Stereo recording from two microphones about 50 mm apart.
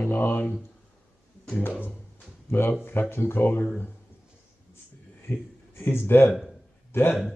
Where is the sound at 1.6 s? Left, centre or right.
Left.